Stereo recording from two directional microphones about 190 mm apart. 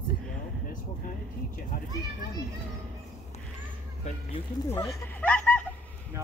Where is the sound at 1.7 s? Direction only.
50° left (ahead or behind).